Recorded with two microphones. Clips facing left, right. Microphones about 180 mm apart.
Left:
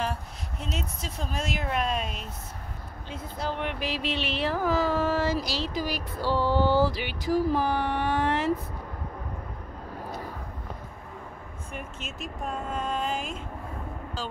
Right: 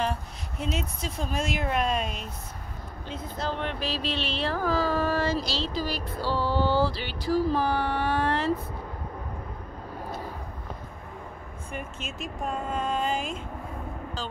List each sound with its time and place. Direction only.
0.0 s speech: centre (ahead or behind); by 8.5 s 20° left (ahead or behind)
11.7 s speech: centre (ahead or behind)